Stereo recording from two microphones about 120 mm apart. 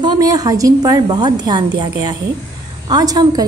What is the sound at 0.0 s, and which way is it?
A woman's voice, 35° right (ahead or behind).